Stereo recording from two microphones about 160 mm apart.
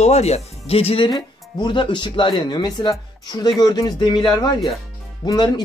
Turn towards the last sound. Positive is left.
turn(degrees=25)  # may be behind; listen again after turning